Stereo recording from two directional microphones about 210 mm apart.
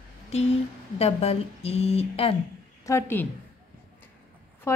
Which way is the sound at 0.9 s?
30° left (ahead or behind).